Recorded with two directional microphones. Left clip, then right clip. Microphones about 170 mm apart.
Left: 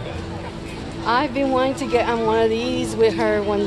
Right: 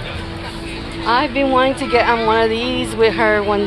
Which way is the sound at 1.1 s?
30° right (ahead or behind).